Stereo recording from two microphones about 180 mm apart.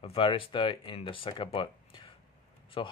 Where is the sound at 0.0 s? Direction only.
30° left (ahead or behind).